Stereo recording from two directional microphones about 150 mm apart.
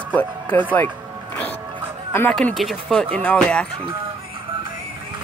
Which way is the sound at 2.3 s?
Centre (ahead or behind).